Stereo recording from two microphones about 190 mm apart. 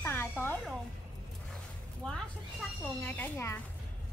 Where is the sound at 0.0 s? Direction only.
10° left (ahead or behind).